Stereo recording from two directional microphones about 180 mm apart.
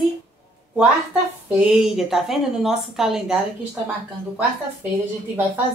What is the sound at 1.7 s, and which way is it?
A woman's voice, centre (ahead or behind).